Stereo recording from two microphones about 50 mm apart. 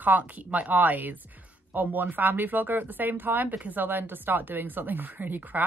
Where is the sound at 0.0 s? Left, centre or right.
Right.